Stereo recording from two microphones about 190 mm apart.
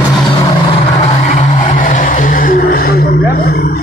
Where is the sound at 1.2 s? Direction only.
40° left (ahead or behind).